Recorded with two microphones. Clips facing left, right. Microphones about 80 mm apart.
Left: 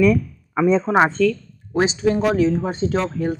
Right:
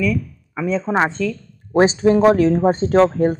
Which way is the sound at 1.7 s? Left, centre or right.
Right.